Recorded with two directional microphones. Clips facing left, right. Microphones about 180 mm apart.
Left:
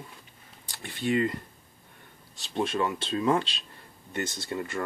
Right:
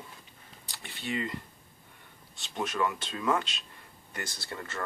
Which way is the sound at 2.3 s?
30° left (ahead or behind).